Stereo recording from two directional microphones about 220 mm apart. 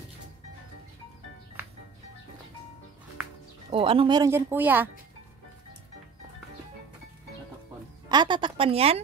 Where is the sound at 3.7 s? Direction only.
25° right (ahead or behind); by 4.8 s 10° right (ahead or behind).